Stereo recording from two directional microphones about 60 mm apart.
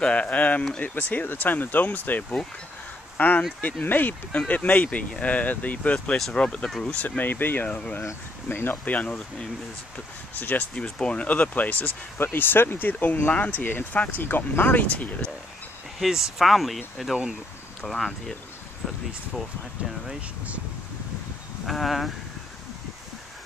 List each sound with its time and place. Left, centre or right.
0.0 s speech: centre
7.6 s speech: left
8.5 s speech: left
8.8 s speech: left
10.7 s speech: centre
16.0 s speech: centre
20.2 s speech: right
21.6 s speech: centre